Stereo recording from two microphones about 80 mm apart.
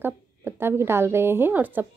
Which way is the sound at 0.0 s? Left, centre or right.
Right.